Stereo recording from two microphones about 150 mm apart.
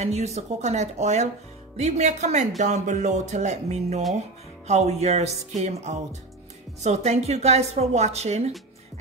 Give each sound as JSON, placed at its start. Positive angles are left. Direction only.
{"t": 0.0, "sound": "a woman's voice", "side_deg": -45}